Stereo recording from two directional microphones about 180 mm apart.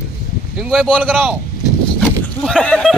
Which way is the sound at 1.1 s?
10° right (ahead or behind).